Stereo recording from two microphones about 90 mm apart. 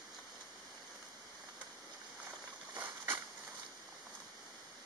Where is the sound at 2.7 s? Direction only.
15° right (ahead or behind).